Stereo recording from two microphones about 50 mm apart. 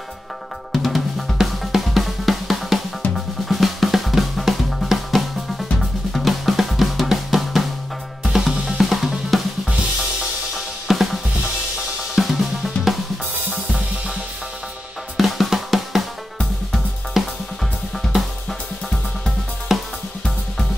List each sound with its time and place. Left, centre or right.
0.8 s drum: centre
8.2 s drum kit: centre
10.5 s drum kit: centre
12.2 s drum kit: centre
13.5 s drum kit: centre
15.1 s drum: centre
17.1 s drum kit: centre